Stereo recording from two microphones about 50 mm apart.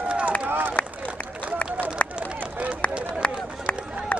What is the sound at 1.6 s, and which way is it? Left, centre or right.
Run, left.